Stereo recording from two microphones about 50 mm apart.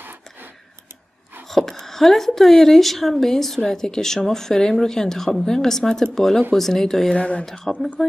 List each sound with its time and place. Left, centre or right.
0.0 s a sound: right
1.5 s speech: centre
7.2 s speech: left
7.7 s speech: centre